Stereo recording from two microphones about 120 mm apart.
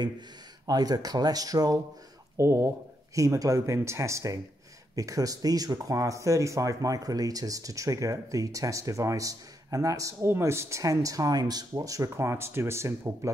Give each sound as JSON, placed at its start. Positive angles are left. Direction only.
{"t": 0.7, "sound": "speech", "side_deg": -35}